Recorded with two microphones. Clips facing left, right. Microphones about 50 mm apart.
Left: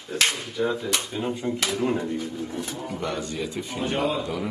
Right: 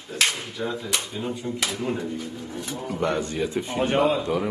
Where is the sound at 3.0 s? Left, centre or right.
Right.